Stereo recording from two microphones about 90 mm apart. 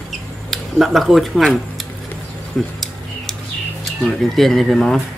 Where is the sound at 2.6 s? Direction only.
5° left (ahead or behind).